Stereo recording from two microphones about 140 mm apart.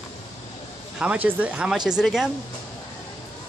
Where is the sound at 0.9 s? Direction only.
10° right (ahead or behind).